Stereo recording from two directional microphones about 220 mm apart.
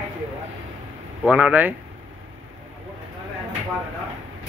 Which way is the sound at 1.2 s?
5° right (ahead or behind).